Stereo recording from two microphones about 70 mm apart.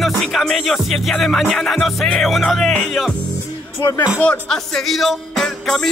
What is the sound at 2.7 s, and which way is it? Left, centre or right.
Speech, centre.